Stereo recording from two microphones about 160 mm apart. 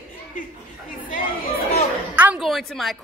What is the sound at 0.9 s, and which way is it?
Chatter, 60° left (ahead or behind).